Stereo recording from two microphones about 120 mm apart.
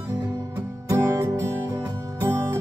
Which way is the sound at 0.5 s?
25° right (ahead or behind).